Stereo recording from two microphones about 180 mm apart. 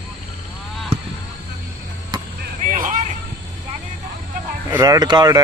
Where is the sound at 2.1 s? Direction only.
20° right (ahead or behind).